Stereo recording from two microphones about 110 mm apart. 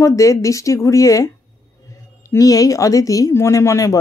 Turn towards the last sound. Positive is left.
turn(degrees=30)  # may be behind; listen again after turning